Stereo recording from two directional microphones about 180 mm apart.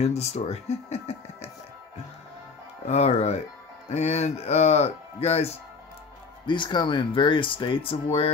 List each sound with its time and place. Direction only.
0.0 s speech: 35° left (ahead or behind)
2.9 s speech: 35° left (ahead or behind)